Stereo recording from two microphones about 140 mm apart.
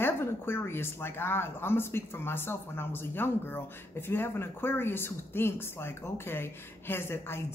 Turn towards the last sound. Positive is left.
turn(degrees=15)  # may be behind; listen again after turning